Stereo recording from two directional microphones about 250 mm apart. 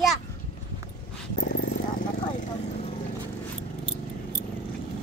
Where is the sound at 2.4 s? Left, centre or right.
Left.